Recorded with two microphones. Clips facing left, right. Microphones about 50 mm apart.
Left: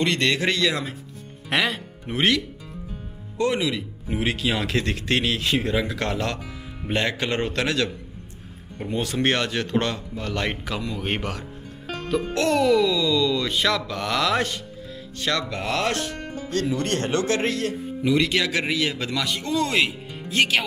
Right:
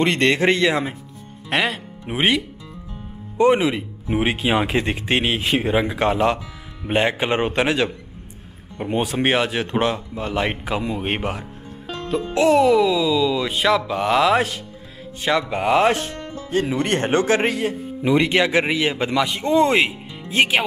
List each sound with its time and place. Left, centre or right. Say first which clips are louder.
0.0 s speech: right 5 dB; right
1.5 s speech: right 2 dB; centre
2.0 s speech: right 2 dB; centre
3.3 s speech: right 7 dB; right
9.1 s speech: right 2 dB; centre
11.1 s speech: right 3 dB; centre